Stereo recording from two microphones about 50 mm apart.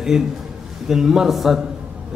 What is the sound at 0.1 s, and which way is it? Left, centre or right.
A man's voice, centre.